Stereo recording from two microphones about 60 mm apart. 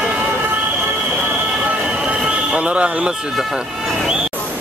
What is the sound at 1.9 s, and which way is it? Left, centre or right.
Neigh, centre.